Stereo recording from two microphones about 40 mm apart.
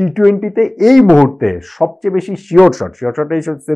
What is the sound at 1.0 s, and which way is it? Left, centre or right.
Speech, centre.